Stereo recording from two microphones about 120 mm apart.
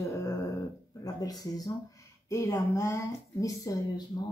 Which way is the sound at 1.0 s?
30° left (ahead or behind).